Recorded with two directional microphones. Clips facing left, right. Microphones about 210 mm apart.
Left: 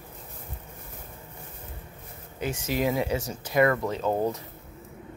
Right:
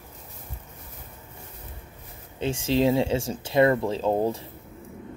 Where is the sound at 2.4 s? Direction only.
25° right (ahead or behind).